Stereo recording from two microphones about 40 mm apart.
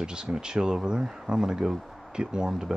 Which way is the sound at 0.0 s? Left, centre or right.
Right.